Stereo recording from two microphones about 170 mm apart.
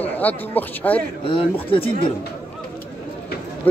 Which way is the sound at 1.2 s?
30° left (ahead or behind).